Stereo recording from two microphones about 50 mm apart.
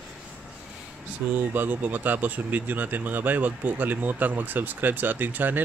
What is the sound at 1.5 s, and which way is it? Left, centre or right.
Speech, right.